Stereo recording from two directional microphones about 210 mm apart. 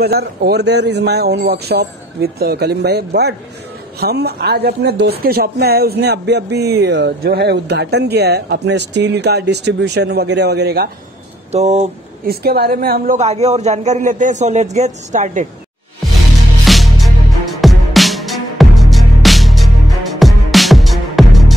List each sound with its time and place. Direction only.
0.0 s speech: 50° right (ahead or behind)
11.5 s a man's voice: 30° right (ahead or behind)
12.3 s a man's voice: 50° right (ahead or behind)
16.6 s music: centre (ahead or behind)